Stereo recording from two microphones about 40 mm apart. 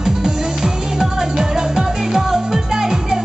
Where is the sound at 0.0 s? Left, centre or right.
Centre.